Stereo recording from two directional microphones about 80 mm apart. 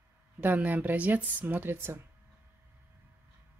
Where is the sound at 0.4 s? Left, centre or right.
Right.